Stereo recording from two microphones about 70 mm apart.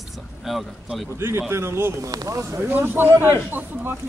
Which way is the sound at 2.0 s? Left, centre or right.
Right.